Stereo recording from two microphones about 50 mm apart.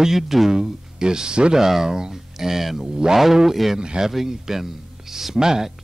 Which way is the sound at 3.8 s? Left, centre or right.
Centre.